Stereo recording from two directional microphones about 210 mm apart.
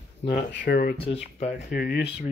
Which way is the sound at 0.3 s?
45° left (ahead or behind).